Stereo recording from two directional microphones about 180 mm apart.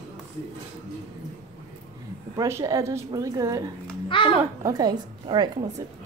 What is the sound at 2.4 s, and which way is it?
Speech, 15° right (ahead or behind).